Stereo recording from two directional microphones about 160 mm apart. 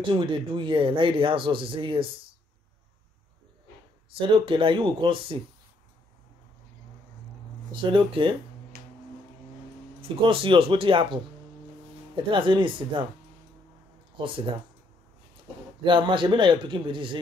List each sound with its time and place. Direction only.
0.1 s speech: 30° right (ahead or behind)
4.3 s speech: 30° right (ahead or behind)
7.7 s speech: 30° right (ahead or behind)
8.7 s a sound: 75° right (ahead or behind)
10.0 s speech: 35° right (ahead or behind)
12.2 s speech: 30° right (ahead or behind)
14.1 s speech: 30° right (ahead or behind)
15.8 s a man's voice: 30° right (ahead or behind)